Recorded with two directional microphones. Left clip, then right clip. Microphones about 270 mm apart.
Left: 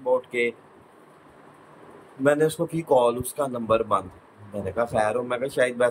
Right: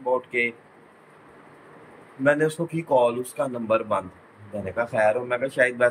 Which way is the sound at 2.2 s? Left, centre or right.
Centre.